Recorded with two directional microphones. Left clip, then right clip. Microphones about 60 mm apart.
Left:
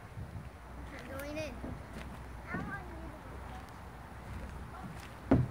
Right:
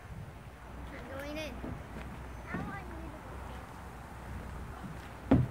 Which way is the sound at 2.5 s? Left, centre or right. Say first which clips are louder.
Even; centre.